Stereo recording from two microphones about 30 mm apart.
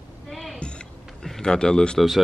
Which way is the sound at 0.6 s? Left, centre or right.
Left.